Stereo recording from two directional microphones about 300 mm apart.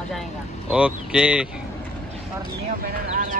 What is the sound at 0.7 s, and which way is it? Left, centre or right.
Speech, centre.